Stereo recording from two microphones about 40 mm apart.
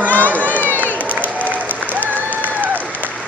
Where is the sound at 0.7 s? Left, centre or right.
Left.